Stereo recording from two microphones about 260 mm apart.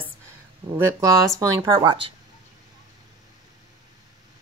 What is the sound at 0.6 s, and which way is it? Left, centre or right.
Speech, right.